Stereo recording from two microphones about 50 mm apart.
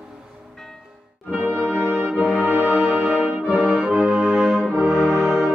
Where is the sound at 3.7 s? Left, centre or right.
Centre.